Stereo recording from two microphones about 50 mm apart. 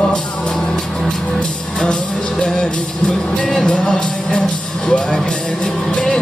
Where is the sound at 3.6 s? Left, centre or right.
Centre.